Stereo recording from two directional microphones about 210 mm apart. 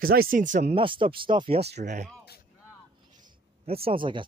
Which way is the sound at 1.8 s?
35° right (ahead or behind).